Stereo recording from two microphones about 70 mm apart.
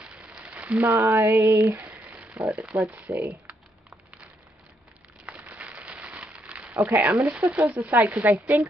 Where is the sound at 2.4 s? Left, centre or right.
Centre.